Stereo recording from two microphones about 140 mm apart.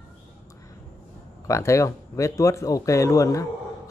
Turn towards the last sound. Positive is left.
turn(degrees=20)  # may be behind; listen again after turning